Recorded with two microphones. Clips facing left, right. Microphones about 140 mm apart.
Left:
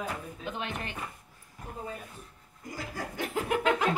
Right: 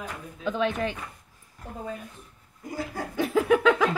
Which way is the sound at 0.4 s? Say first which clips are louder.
Right 15 dB; 90° right.